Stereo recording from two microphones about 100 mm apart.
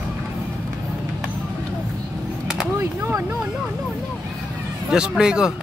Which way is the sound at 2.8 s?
25° right (ahead or behind).